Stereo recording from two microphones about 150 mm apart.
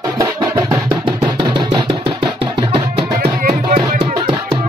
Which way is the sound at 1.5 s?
30° right (ahead or behind).